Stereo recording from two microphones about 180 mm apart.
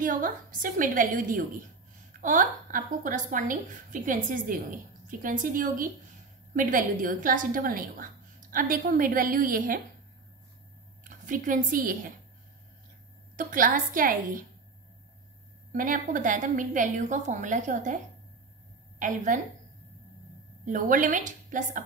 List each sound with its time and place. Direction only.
0.0 s a woman's voice: 50° right (ahead or behind)
11.1 s a woman's voice: 45° right (ahead or behind)
13.4 s a woman's voice: 50° right (ahead or behind)
15.7 s a woman's voice: 50° right (ahead or behind)
18.9 s a woman's voice: 45° right (ahead or behind)
20.6 s a woman's voice: 45° right (ahead or behind)